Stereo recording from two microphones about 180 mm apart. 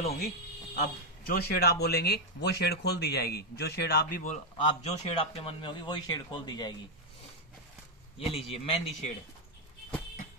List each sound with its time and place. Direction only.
0.7 s speech: 55° left (ahead or behind); by 6.8 s 25° left (ahead or behind)
8.3 s a man's voice: 30° left (ahead or behind)